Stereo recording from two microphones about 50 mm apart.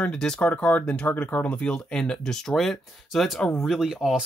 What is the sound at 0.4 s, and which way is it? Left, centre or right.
Speech, left.